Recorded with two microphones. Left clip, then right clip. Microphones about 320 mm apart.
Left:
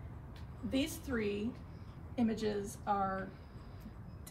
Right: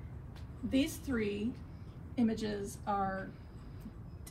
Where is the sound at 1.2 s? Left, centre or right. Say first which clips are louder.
Even; left.